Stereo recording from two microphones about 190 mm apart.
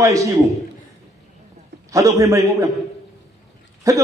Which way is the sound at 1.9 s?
15° right (ahead or behind).